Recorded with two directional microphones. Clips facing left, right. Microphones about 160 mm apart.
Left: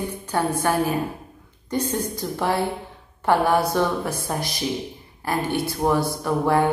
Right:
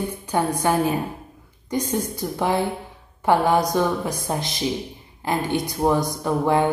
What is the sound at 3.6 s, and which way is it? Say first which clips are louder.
A woman's voice: right 1 dB; 15° right (ahead or behind).